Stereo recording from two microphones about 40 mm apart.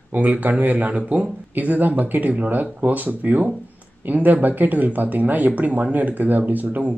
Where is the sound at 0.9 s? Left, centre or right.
Right.